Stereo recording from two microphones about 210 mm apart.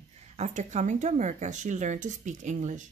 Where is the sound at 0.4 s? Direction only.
35° right (ahead or behind).